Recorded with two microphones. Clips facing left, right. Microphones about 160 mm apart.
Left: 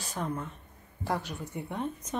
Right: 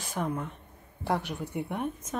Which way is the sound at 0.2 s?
10° right (ahead or behind).